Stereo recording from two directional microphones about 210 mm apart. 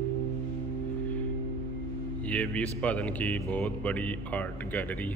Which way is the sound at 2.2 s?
5° left (ahead or behind).